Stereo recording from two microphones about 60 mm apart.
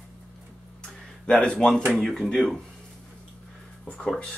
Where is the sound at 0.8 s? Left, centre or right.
Centre.